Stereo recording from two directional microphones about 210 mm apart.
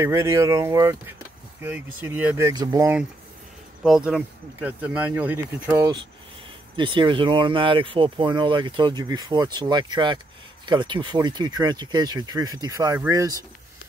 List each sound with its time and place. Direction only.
0.0 s speech: 15° right (ahead or behind)